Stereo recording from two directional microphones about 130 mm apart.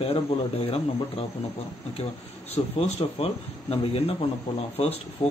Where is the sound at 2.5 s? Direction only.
50° left (ahead or behind).